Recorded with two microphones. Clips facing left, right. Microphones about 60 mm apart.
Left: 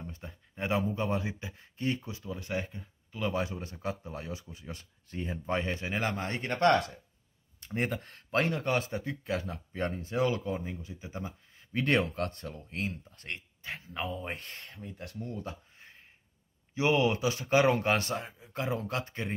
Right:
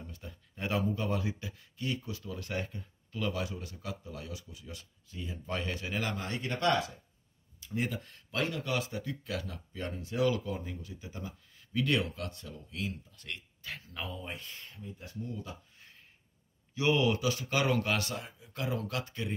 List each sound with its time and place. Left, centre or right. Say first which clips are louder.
0.0 s speech: left 3 dB; left
3.3 s speech: left 4 dB; left
5.5 s speech: left 3 dB; left
11.7 s speech: left 3 dB; left
13.6 s speech: left 6 dB; left
14.2 s speech: left 3 dB; left
16.7 s speech: left 2 dB; left